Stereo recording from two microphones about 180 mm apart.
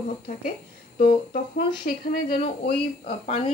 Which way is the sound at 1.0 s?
55° left (ahead or behind).